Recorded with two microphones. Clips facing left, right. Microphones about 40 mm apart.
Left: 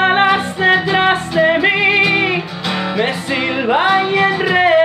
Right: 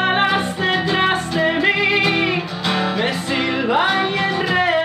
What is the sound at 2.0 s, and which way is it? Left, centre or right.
Music, centre.